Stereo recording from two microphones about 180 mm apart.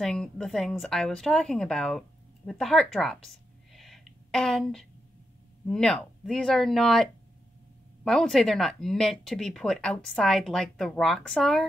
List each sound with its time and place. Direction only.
0.0 s a woman's voice: 5° left (ahead or behind)